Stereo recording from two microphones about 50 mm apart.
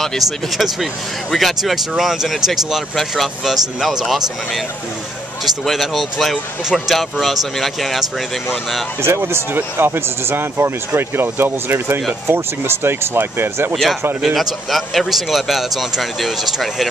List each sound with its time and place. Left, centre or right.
0.5 s speech: centre
9.0 s speech: right
14.2 s speech: centre